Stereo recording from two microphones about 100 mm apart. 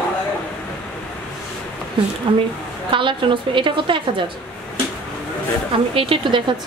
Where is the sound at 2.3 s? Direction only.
60° right (ahead or behind).